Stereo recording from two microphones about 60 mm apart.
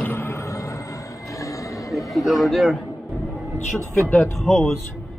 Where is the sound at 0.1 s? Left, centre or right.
Left.